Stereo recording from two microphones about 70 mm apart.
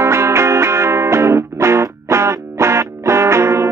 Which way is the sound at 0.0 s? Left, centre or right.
Right.